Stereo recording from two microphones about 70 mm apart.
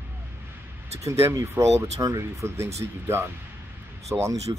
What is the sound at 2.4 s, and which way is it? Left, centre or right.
Speech, right.